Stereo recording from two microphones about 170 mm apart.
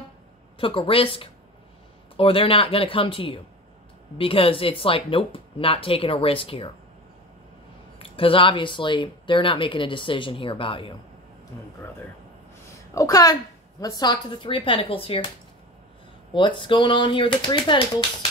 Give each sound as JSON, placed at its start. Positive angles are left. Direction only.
{"t": 0.6, "sound": "speech", "side_deg": 30}
{"t": 8.0, "sound": "speech", "side_deg": 30}
{"t": 12.9, "sound": "speech", "side_deg": 20}
{"t": 16.3, "sound": "speech", "side_deg": 30}